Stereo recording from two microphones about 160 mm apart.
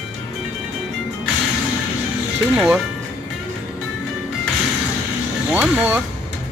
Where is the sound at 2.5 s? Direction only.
5° right (ahead or behind).